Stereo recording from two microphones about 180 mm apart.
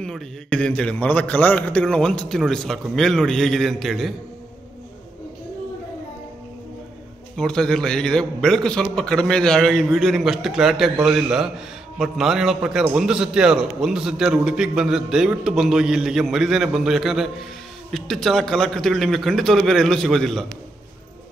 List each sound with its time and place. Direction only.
0.0 s a man's voice: 5° left (ahead or behind)
7.3 s a man's voice: 5° left (ahead or behind)